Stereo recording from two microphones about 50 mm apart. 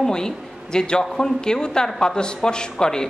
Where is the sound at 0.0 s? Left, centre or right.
Centre.